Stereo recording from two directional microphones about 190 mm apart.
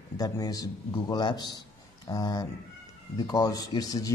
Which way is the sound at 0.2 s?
20° left (ahead or behind).